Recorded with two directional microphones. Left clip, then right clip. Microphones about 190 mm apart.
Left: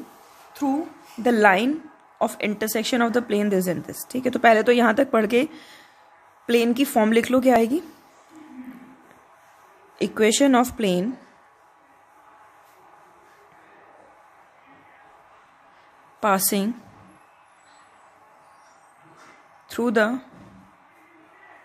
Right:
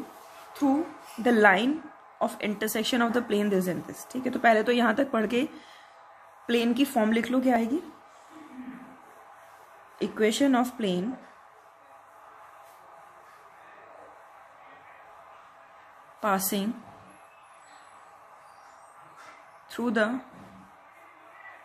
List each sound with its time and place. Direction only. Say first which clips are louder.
1.2 s a woman's voice: left 3 dB; 30° left (ahead or behind); by 7.8 s 45° left (ahead or behind)
9.9 s speech: left 6 dB; 45° left (ahead or behind)
16.2 s speech: left 6 dB; 40° left (ahead or behind)
19.7 s speech: left 6 dB; 35° left (ahead or behind)